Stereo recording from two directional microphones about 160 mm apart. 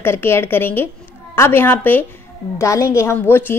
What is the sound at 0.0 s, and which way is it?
A woman's voice, 15° left (ahead or behind).